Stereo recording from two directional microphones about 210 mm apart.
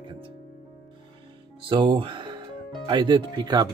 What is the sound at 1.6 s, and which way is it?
Speech, 25° right (ahead or behind).